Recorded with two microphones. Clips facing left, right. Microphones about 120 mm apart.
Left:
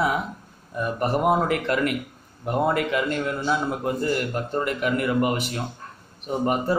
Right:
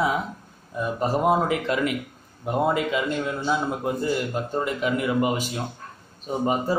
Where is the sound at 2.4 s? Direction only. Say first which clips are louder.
Even; 5° right (ahead or behind).